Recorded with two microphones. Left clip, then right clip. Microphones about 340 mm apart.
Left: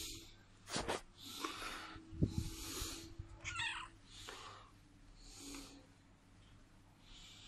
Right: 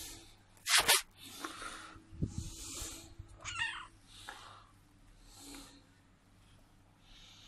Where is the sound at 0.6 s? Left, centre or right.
Right.